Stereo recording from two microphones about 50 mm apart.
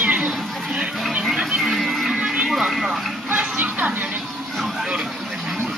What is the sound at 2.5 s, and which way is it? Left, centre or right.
Vehicle, centre.